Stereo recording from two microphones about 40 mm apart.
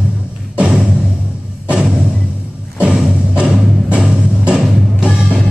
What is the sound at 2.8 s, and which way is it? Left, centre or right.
Music, right.